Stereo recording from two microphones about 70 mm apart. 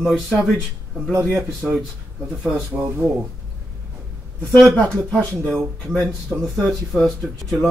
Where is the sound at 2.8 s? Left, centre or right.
Centre.